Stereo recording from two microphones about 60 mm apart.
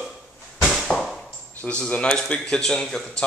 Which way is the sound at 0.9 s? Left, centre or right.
Centre.